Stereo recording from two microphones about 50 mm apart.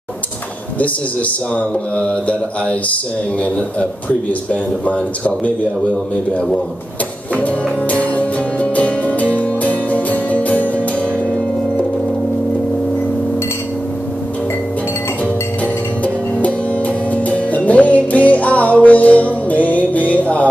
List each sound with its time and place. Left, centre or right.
4.3 s speech: left
7.3 s music: left
15.6 s music: left